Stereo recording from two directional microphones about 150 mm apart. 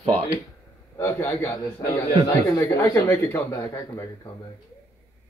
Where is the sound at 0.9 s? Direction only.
15° left (ahead or behind).